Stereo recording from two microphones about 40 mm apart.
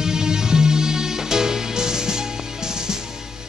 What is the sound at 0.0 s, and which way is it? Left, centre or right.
Music, centre.